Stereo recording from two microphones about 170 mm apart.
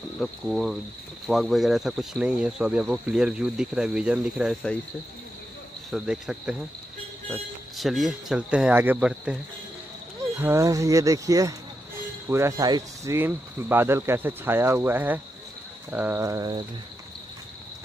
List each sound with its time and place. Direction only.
0.2 s speech: 5° right (ahead or behind)
5.9 s speech: centre (ahead or behind)
10.4 s speech: 15° right (ahead or behind)